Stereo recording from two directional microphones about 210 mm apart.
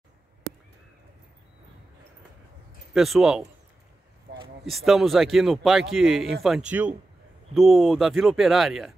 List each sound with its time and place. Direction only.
2.9 s speech: centre (ahead or behind)
4.3 s a sound: 50° right (ahead or behind)
4.6 s speech: centre (ahead or behind)